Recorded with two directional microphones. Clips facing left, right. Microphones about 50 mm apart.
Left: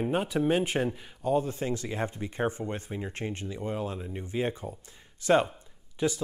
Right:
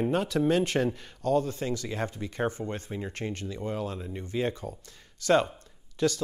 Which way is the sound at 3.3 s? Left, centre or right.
Left.